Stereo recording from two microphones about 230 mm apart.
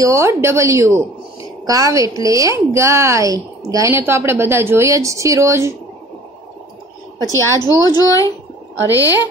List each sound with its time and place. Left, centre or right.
0.0 s a woman's voice: centre
7.2 s speech: centre